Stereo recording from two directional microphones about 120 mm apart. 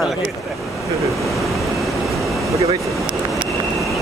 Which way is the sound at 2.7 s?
Centre (ahead or behind).